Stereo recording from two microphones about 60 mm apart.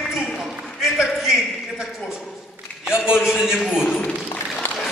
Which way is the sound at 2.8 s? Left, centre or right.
Centre.